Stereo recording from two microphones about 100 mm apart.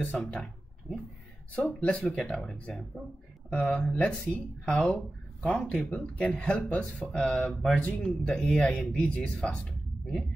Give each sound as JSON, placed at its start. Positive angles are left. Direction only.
{"t": 0.0, "sound": "speech", "side_deg": 15}